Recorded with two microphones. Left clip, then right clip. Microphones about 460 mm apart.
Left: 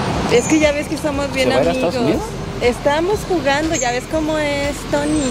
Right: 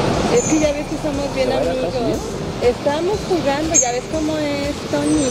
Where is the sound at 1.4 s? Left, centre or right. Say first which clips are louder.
Left 3 dB; left.